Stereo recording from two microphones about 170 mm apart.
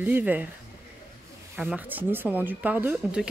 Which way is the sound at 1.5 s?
10° right (ahead or behind).